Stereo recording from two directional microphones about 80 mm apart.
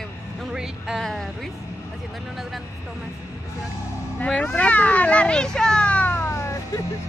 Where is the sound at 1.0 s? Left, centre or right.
Centre.